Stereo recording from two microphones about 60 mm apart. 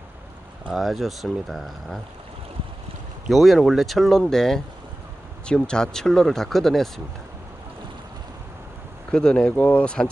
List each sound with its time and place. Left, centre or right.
0.7 s speech: centre
3.3 s speech: centre
9.1 s speech: centre